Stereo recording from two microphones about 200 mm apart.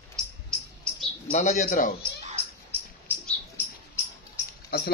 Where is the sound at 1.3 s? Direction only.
35° left (ahead or behind).